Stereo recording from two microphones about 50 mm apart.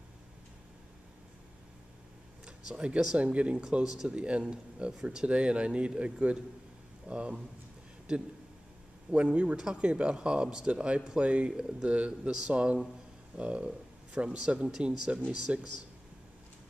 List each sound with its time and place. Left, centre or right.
2.4 s a sound: centre
3.2 s speech: right
3.8 s speech: centre
4.1 s speech: right
9.1 s speech: right